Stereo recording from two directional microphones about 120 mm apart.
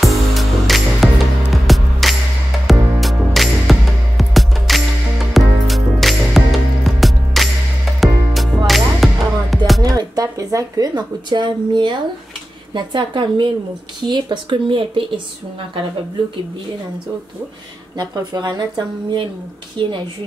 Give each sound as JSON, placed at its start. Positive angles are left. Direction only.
{"t": 0.0, "sound": "music", "side_deg": 0}
{"t": 9.8, "sound": "speech", "side_deg": -30}
{"t": 17.9, "sound": "speech", "side_deg": -35}